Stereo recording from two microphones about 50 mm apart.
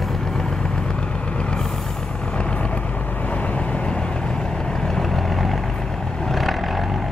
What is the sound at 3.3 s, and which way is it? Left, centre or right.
Vehicle, left.